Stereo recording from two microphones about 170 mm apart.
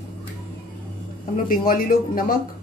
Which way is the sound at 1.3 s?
55° left (ahead or behind).